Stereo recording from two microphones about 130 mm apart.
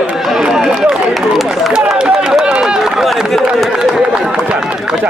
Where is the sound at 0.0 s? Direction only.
5° right (ahead or behind).